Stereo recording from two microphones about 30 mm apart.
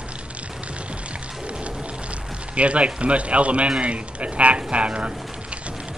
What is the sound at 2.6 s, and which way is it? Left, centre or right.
Speech, right.